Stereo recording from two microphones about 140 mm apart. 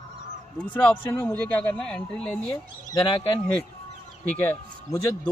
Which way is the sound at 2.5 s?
35° left (ahead or behind).